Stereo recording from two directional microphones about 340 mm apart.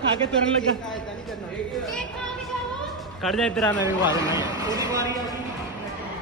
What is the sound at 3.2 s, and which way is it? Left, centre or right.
Speech, centre.